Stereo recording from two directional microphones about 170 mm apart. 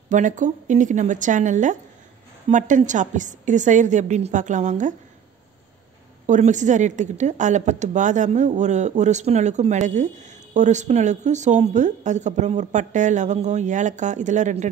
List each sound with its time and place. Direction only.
0.1 s a woman's voice: 45° right (ahead or behind)
6.2 s a woman's voice: 45° right (ahead or behind)